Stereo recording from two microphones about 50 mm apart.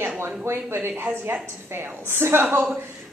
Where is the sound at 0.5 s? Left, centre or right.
Right.